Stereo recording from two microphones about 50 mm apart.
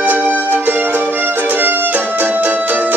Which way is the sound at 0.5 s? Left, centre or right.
Right.